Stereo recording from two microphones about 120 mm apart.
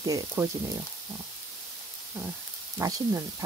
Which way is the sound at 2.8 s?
30° right (ahead or behind).